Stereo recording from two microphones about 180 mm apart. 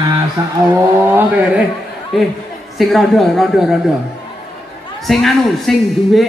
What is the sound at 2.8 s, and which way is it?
A woman's voice, centre (ahead or behind).